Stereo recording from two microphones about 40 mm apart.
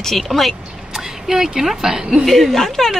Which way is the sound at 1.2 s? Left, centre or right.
Centre.